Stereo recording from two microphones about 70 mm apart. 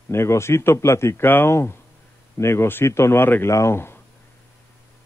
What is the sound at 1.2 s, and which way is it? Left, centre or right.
Speech, left.